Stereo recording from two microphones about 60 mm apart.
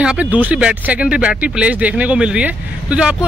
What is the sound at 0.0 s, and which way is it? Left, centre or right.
Speech, right.